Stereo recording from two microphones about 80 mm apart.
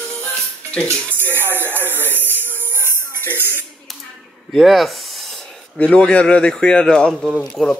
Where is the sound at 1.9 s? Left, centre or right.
Left.